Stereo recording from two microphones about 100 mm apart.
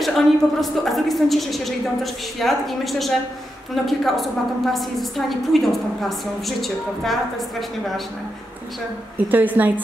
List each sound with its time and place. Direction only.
0.0 s a woman's voice: centre (ahead or behind)
9.3 s a woman's voice: 15° right (ahead or behind)